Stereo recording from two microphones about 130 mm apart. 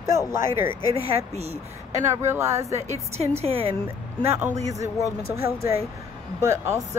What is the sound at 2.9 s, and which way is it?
Speech, 55° right (ahead or behind).